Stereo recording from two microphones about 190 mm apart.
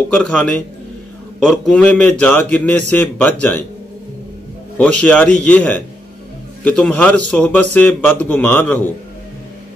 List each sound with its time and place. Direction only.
0.1 s a man's voice: 5° left (ahead or behind)
4.7 s a man's voice: 5° left (ahead or behind)